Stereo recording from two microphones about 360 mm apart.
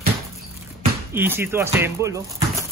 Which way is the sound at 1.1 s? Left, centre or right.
Centre.